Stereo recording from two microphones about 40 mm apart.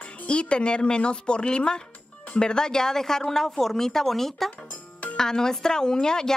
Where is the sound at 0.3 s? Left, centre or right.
Left.